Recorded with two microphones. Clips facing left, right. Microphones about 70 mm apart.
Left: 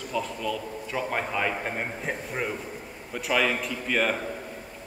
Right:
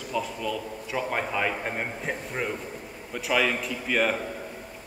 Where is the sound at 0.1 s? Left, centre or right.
Centre.